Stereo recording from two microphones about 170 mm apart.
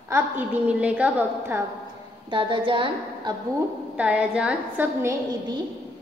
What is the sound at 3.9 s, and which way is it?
A woman's voice, 5° right (ahead or behind).